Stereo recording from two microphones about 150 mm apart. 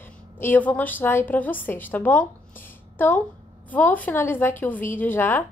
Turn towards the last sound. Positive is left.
turn(degrees=15)  # may be behind; listen again after turning